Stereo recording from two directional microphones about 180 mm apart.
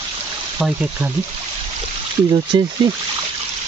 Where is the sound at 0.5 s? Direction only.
5° right (ahead or behind).